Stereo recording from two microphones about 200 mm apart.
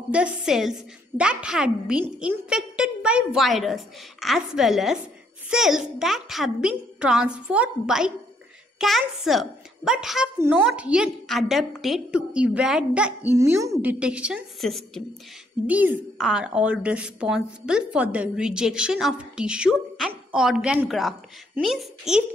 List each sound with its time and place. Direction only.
0.1 s a woman's voice: 5° right (ahead or behind)